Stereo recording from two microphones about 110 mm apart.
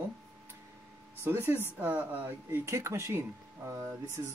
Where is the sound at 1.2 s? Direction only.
20° right (ahead or behind).